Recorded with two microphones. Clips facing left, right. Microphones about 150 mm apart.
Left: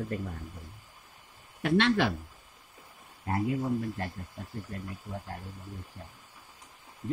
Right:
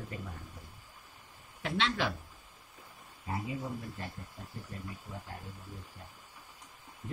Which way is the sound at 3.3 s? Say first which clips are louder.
Left 8 dB; 65° left (ahead or behind).